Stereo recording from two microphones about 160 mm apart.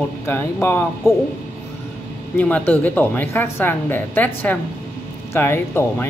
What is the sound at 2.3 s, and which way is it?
Speech, 10° left (ahead or behind).